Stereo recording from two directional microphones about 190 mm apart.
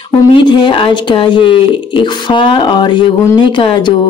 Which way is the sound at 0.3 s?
25° left (ahead or behind).